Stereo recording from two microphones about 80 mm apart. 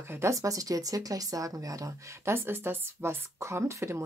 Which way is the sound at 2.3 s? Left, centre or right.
Right.